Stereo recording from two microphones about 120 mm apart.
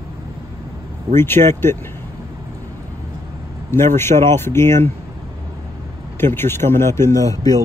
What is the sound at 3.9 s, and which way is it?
Speech, 20° left (ahead or behind).